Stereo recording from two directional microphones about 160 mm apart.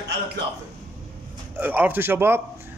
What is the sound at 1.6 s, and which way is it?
Speech, 10° right (ahead or behind).